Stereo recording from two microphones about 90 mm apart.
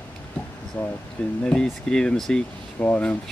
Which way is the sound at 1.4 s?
10° left (ahead or behind).